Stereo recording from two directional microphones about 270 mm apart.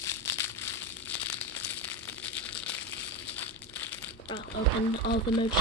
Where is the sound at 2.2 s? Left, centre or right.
Centre.